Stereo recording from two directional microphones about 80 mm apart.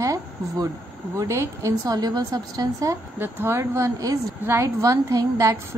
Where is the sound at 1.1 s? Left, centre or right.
Right.